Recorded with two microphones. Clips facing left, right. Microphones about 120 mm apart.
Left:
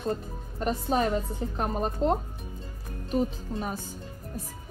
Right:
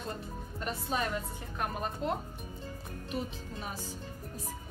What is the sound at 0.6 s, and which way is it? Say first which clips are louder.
Speech: left 8 dB; 35° left (ahead or behind).